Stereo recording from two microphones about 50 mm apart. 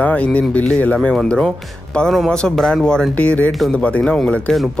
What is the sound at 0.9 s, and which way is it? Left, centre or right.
Speech, centre.